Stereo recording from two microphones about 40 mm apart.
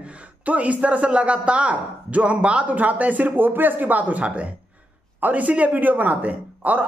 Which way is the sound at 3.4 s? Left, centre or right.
Right.